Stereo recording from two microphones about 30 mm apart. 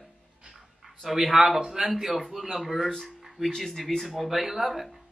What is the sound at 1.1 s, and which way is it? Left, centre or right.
Speech, centre.